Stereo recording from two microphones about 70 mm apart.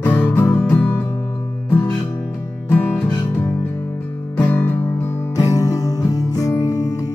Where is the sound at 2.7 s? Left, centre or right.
Left.